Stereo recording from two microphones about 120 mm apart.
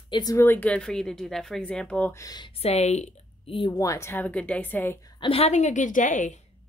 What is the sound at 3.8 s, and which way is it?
Speech, 25° left (ahead or behind).